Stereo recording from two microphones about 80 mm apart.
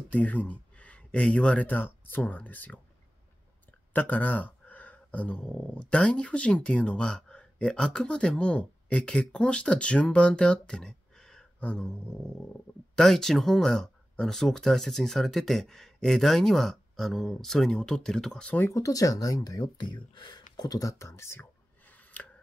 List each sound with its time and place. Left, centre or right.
0.1 s speech: centre
3.9 s speech: left; by 18.5 s centre
18.7 s speech: left
22.2 s scissors: left